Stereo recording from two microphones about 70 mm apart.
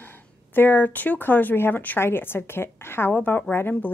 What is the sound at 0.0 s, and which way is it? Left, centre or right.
Speech, left.